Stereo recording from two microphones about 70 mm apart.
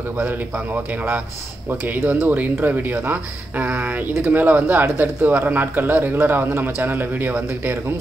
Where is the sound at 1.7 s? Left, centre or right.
Right.